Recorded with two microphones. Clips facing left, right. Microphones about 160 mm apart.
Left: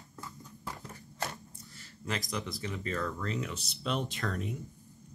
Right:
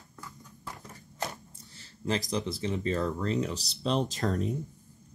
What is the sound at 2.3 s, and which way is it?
Speech, 25° right (ahead or behind).